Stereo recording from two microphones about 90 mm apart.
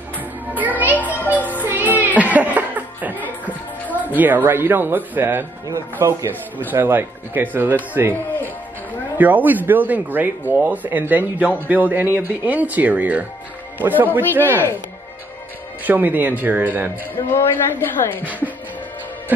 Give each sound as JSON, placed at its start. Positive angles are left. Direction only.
{"t": 0.9, "sound": "music", "side_deg": 20}
{"t": 1.6, "sound": "music", "side_deg": -20}
{"t": 3.9, "sound": "speech", "side_deg": -20}
{"t": 9.2, "sound": "speech", "side_deg": -20}
{"t": 14.4, "sound": "a woman's voice", "side_deg": 25}
{"t": 15.8, "sound": "speech", "side_deg": -20}
{"t": 17.3, "sound": "a woman's voice", "side_deg": 25}